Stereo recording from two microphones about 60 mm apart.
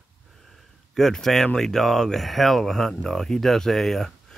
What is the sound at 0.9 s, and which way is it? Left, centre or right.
Speech, centre.